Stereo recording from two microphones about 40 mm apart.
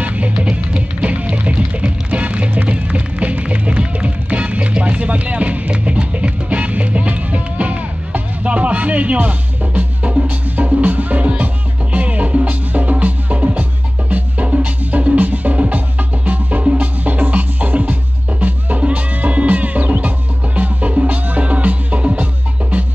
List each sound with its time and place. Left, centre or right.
0.0 s music: right
10.2 s music: right